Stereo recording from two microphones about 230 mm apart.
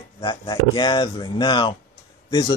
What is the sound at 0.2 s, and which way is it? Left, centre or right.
Speech, centre.